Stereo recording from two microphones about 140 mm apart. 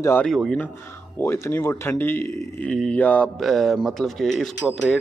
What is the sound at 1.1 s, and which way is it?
A man's voice, 20° left (ahead or behind).